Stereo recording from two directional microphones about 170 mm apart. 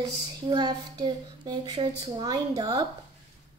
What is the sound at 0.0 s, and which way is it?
Speech, 25° right (ahead or behind).